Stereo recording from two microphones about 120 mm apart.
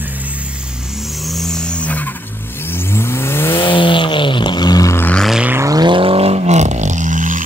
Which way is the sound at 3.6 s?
45° left (ahead or behind).